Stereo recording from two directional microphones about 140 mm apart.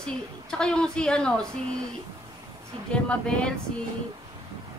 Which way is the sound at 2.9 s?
10° left (ahead or behind).